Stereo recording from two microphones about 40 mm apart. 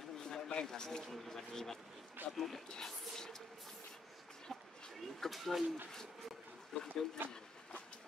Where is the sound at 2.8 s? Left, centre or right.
Centre.